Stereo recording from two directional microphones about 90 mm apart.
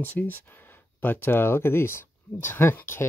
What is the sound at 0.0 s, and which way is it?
Speech, 20° left (ahead or behind).